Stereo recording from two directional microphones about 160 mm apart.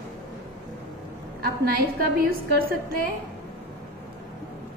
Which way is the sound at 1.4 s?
70° right (ahead or behind).